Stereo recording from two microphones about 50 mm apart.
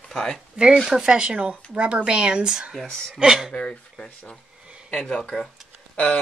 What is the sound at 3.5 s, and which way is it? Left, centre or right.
Speech, left.